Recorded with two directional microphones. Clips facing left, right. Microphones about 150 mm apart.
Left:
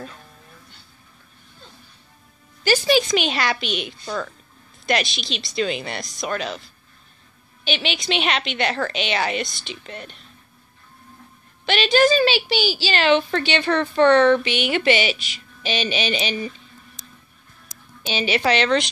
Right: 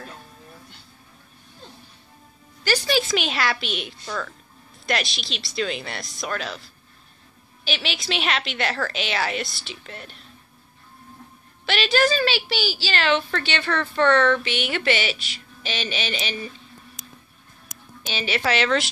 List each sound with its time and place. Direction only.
2.6 s music: 20° left (ahead or behind)
3.0 s a woman's voice: centre (ahead or behind)
4.0 s speech: 25° left (ahead or behind)
4.8 s a woman's voice: centre (ahead or behind)
11.6 s a woman's voice: centre (ahead or behind)
12.1 s a woman's voice: 20° left (ahead or behind)
18.0 s a woman's voice: 15° left (ahead or behind)
18.5 s a woman's voice: 5° right (ahead or behind)